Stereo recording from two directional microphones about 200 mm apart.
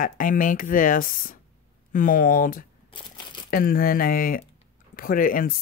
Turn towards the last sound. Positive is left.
turn(degrees=45)  # may be behind; listen again after turning